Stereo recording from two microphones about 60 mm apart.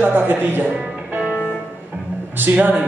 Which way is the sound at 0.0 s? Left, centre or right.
Right.